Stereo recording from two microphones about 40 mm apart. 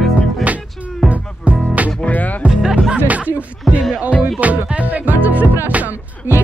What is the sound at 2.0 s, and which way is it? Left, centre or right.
Speech, left.